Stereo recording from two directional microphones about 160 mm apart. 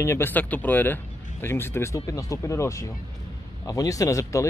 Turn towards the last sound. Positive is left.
turn(degrees=20)  # may be behind; listen again after turning